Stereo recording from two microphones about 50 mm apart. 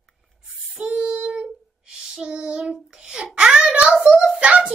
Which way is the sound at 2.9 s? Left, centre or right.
Centre.